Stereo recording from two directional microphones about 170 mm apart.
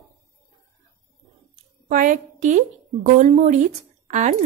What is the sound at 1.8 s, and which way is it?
A woman's voice, 50° right (ahead or behind).